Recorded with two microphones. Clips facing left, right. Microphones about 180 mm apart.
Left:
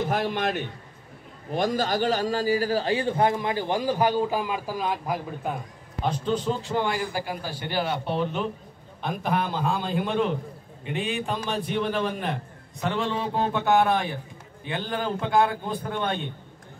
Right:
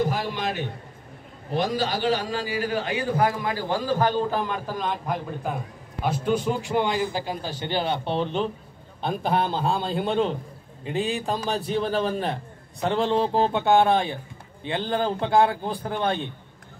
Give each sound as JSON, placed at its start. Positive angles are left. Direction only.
{"t": 0.1, "sound": "a sound", "side_deg": 55}
{"t": 1.6, "sound": "a man's voice", "side_deg": 45}
{"t": 6.0, "sound": "a man's voice", "side_deg": -10}